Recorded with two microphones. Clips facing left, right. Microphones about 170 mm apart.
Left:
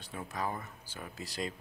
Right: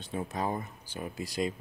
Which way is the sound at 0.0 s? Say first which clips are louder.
Right 5 dB; 25° right (ahead or behind).